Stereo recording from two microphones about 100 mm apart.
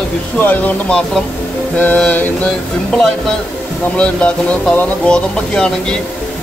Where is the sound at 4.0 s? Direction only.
10° left (ahead or behind).